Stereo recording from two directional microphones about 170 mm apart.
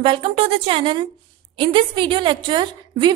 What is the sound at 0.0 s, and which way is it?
A woman's voice, 35° right (ahead or behind).